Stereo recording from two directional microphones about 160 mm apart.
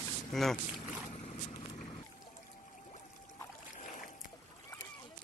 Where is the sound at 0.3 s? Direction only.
Centre (ahead or behind).